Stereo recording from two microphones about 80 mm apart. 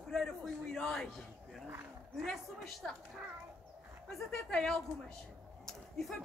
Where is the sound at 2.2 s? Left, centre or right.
Centre.